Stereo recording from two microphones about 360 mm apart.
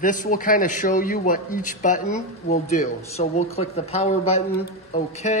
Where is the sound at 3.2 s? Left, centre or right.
Centre.